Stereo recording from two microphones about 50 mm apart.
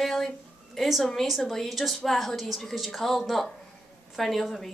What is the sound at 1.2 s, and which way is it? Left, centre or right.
A woman's voice, centre.